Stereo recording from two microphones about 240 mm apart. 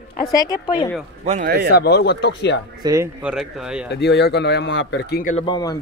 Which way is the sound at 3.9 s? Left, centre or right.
Left.